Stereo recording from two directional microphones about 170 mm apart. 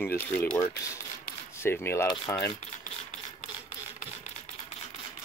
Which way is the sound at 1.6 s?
15° left (ahead or behind).